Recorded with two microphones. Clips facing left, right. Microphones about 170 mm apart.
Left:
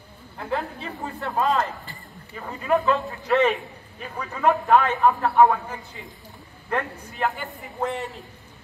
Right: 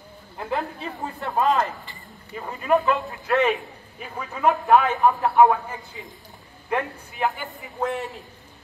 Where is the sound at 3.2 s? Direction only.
Centre (ahead or behind).